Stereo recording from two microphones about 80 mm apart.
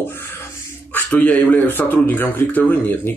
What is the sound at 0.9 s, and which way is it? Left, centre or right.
Speech, left.